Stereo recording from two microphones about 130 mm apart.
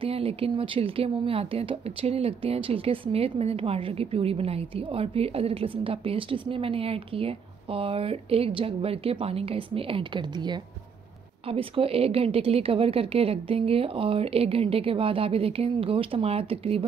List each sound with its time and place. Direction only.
0.0 s speech: 45° right (ahead or behind)
11.4 s speech: 45° right (ahead or behind)